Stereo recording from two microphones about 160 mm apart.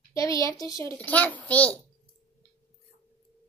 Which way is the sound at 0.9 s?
10° left (ahead or behind).